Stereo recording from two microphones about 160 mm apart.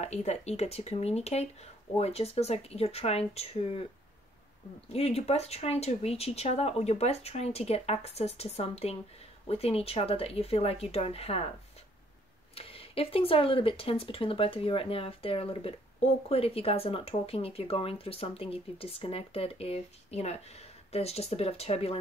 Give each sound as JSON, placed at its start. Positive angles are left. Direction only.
{"t": 0.0, "sound": "speech", "side_deg": 45}
{"t": 4.9, "sound": "speech", "side_deg": 40}
{"t": 12.5, "sound": "speech", "side_deg": 35}